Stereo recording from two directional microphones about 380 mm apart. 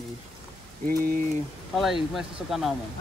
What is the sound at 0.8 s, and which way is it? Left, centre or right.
Speech, right.